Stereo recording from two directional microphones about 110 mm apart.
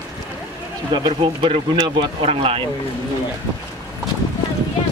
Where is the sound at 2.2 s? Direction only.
60° right (ahead or behind).